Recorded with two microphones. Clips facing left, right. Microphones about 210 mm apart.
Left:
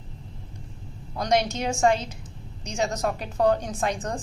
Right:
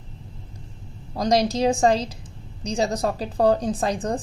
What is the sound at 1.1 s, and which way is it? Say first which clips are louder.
A woman's voice: right 3 dB; 35° right (ahead or behind).